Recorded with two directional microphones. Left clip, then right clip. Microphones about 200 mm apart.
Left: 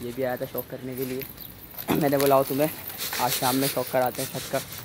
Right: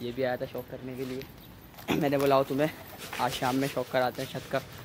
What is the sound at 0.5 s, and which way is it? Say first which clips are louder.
Speech: left 4 dB; 20° left (ahead or behind).